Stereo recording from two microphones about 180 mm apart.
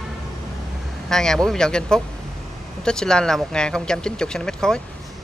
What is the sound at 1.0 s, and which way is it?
Speech, 5° left (ahead or behind).